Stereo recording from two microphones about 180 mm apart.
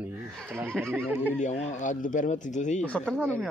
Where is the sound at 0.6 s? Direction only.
5° left (ahead or behind).